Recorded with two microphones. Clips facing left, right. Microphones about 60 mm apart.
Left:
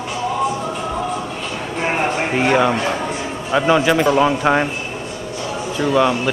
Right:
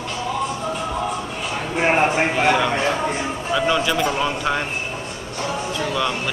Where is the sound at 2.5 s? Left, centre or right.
Left.